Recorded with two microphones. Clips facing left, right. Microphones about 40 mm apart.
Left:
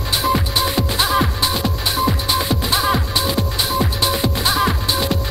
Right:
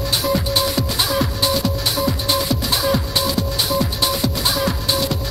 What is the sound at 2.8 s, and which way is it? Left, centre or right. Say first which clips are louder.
Music: left 1 dB; left.